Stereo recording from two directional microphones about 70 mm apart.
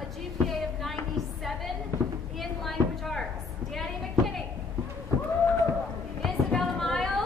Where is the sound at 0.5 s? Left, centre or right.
Centre.